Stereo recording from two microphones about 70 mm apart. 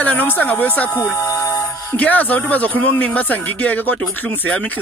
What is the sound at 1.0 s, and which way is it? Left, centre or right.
Music, left.